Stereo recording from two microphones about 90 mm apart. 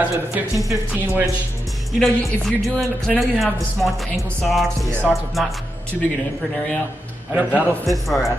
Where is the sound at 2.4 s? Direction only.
Centre (ahead or behind).